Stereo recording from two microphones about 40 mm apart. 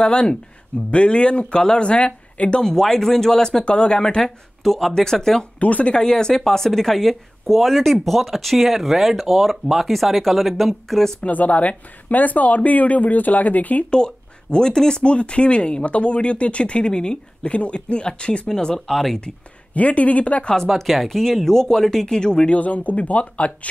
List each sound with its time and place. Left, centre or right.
0.0 s speech: left
2.6 s speech: centre
3.6 s speech: left
4.6 s speech: centre
5.6 s speech: left
5.9 s speech: centre
11.2 s speech: left
13.8 s speech: left
18.5 s speech: centre
19.7 s speech: left
20.7 s speech: centre
22.5 s speech: left